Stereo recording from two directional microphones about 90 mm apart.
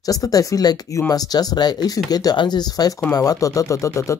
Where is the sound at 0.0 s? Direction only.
40° left (ahead or behind).